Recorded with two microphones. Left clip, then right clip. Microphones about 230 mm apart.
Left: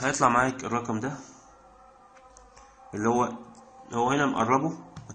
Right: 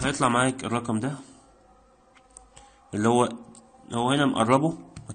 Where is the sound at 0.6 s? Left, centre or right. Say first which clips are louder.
Right 1 dB; right.